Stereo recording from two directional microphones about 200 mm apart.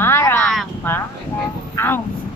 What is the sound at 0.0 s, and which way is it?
Vehicle, 10° left (ahead or behind).